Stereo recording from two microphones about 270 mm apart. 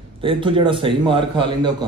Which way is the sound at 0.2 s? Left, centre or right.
Centre.